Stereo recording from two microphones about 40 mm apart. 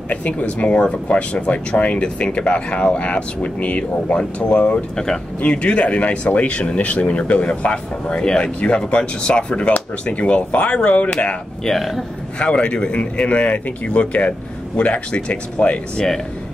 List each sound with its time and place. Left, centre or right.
0.1 s speech: left
4.9 s speech: centre
5.5 s speech: left
11.6 s speech: centre
12.4 s speech: left